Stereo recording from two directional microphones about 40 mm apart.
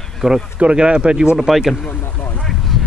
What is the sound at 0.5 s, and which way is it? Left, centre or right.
Speech, right.